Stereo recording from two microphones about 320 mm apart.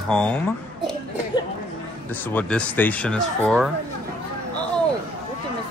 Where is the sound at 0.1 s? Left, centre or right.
Centre.